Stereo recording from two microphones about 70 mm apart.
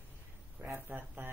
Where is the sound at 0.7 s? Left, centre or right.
Right.